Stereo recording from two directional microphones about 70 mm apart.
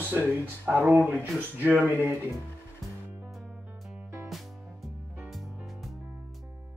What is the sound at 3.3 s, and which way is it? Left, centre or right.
Music, centre.